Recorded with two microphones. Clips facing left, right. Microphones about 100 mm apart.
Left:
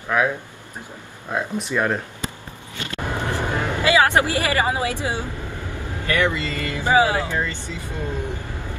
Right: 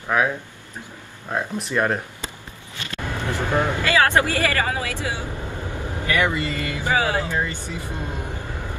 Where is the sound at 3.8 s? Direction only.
15° left (ahead or behind).